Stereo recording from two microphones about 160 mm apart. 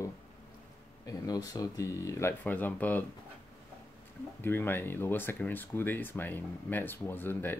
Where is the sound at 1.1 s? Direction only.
25° left (ahead or behind).